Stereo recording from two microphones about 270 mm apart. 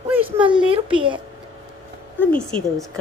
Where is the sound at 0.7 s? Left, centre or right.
Centre.